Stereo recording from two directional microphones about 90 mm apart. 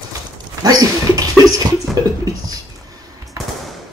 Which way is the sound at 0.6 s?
45° right (ahead or behind).